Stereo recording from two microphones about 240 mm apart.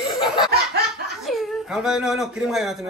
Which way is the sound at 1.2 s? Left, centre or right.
Centre.